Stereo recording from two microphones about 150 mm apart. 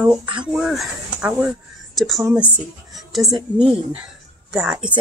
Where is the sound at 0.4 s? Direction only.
5° right (ahead or behind).